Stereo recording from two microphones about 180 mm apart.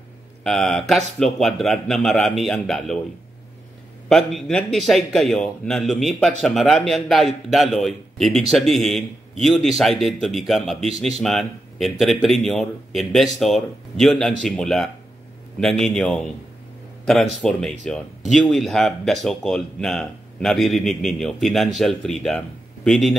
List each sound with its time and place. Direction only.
0.4 s speech: centre (ahead or behind)
4.1 s speech: centre (ahead or behind)